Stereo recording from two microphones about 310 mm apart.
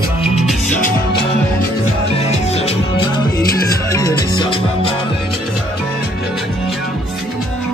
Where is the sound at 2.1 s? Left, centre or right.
Centre.